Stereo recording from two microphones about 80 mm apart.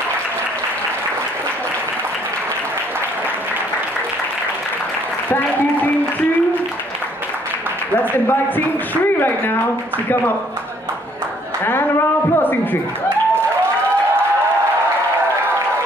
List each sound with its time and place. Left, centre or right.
8.1 s a woman's voice: left